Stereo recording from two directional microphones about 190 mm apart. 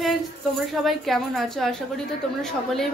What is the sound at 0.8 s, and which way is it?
A woman's voice, centre (ahead or behind).